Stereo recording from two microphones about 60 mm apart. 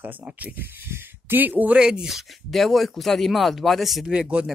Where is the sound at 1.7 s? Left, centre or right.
Centre.